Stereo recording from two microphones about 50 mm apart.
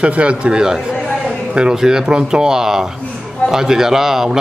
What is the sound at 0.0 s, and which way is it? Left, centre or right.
A man's voice, right.